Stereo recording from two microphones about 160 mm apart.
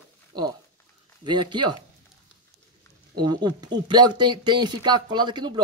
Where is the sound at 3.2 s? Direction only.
25° right (ahead or behind).